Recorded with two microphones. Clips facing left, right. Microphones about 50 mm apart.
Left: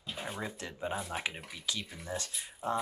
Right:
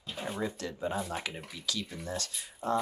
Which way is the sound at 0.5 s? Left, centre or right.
Left.